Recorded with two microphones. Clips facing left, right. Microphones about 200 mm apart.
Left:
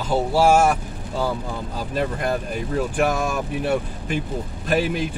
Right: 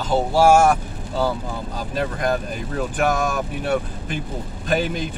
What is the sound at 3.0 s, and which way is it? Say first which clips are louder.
Speech: right 2 dB; 5° left (ahead or behind).